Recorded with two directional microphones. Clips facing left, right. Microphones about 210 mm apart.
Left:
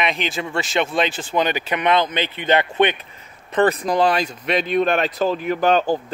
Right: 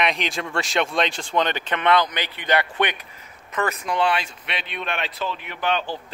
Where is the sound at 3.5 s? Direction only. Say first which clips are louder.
Left 8 dB; 35° left (ahead or behind).